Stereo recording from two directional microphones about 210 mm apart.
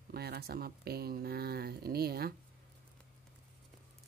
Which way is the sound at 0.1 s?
50° right (ahead or behind).